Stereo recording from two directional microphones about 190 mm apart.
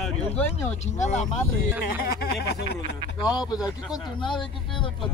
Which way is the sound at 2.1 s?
55° left (ahead or behind).